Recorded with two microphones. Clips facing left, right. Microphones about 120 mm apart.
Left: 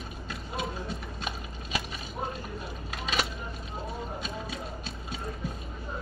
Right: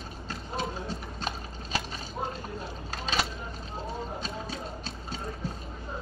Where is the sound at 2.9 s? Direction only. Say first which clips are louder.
Right 1 dB; 35° right (ahead or behind).